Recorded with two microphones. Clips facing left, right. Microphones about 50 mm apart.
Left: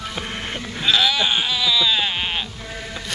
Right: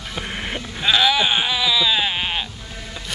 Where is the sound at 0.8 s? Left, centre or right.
Centre.